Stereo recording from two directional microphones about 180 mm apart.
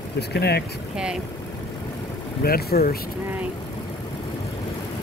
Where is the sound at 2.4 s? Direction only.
60° left (ahead or behind).